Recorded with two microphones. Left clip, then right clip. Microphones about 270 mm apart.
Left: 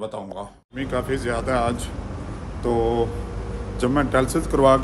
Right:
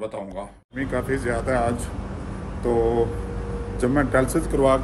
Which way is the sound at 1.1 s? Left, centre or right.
Centre.